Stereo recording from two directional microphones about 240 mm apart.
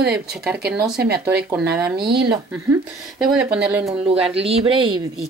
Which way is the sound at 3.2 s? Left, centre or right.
Centre.